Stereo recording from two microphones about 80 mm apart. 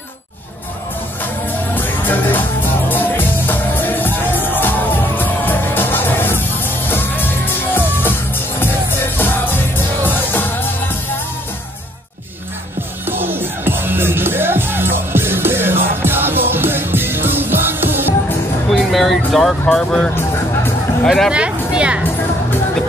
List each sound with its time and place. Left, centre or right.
1.8 s music: left
13.0 s music: right
18.7 s music: centre
19.7 s speech: centre
21.3 s a sound: centre